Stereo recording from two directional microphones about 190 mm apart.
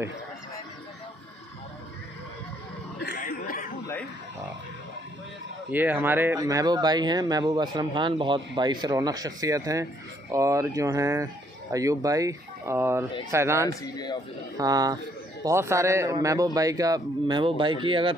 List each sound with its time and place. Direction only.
3.2 s a sound: 45° left (ahead or behind)
5.7 s speech: 10° right (ahead or behind)
13.7 s speech: 20° left (ahead or behind)
14.6 s speech: 20° right (ahead or behind)